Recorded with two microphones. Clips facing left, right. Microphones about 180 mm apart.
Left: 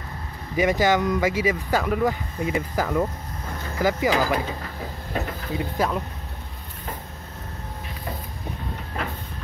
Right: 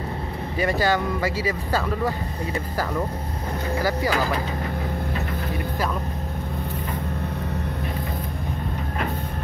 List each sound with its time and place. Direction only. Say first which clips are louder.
0.6 s speech: left 2 dB; 15° left (ahead or behind)